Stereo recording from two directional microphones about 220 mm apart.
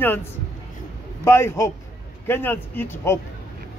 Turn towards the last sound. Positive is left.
turn(degrees=10)  # may be behind; listen again after turning